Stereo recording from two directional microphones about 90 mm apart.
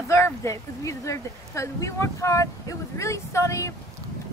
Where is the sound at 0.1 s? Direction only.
35° left (ahead or behind).